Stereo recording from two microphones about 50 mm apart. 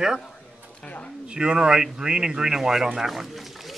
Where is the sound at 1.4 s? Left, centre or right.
Centre.